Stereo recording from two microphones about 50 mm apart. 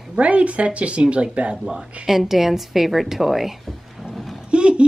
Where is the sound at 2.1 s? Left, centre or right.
Centre.